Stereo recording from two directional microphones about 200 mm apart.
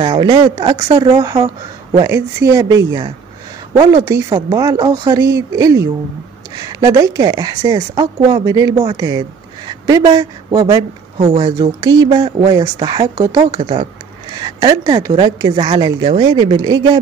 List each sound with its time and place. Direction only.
0.0 s a woman's voice: 25° right (ahead or behind)
3.9 s a woman's voice: 15° right (ahead or behind)